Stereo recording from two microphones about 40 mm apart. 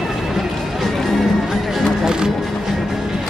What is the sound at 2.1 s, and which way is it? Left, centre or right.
Music, centre.